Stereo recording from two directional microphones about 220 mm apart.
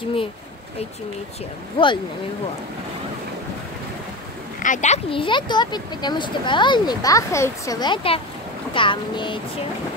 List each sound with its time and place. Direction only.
1.8 s speech: 25° left (ahead or behind)
4.6 s speech: 35° left (ahead or behind)